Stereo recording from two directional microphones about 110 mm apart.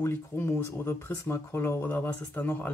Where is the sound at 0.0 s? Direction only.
20° left (ahead or behind).